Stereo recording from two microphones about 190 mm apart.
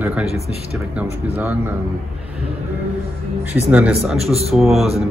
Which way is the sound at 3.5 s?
10° right (ahead or behind).